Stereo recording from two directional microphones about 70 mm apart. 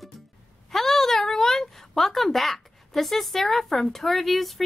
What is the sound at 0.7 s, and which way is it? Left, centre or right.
A child's voice, centre.